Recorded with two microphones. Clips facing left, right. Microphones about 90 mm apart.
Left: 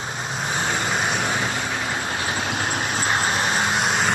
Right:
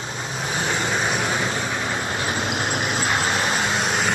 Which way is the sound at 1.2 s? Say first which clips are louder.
Right 1 dB; 30° right (ahead or behind).